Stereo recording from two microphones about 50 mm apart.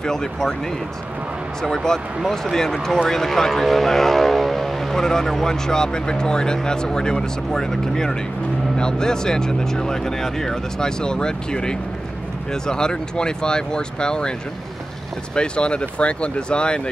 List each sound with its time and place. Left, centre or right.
0.0 s speech: centre
1.6 s speech: centre
15.3 s speech: centre